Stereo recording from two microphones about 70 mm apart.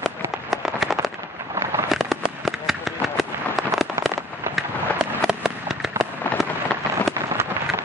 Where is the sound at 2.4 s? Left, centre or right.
Centre.